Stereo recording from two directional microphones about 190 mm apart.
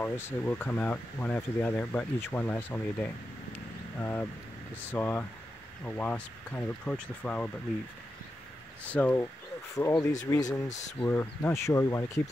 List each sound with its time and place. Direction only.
0.0 s speech: 10° left (ahead or behind)
3.5 s vehicle: 10° left (ahead or behind)
4.8 s speech: 10° left (ahead or behind)
8.8 s speech: 10° left (ahead or behind)